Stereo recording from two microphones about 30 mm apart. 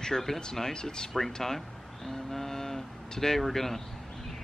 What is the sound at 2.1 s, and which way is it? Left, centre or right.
Vehicle, centre.